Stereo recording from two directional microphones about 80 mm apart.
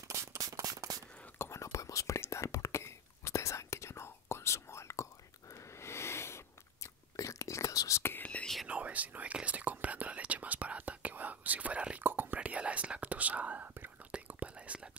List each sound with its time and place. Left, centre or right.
0.1 s a sound: right
0.4 s a sound: right
1.4 s whispering: left
5.5 s chewing: left
8.0 s whispering: left
8.6 s whispering: centre